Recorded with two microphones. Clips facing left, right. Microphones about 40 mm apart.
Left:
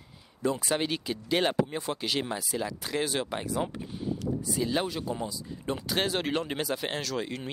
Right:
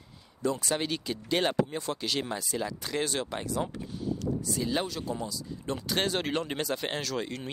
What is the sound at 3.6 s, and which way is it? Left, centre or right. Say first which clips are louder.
Speech: left 1 dB; left.